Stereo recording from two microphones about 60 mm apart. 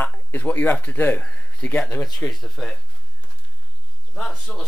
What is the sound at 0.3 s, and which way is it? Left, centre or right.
Speech, left.